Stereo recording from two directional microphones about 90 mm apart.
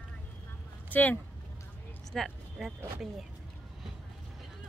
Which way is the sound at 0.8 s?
20° left (ahead or behind).